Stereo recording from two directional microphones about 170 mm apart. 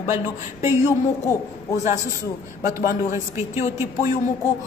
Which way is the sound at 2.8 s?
45° left (ahead or behind).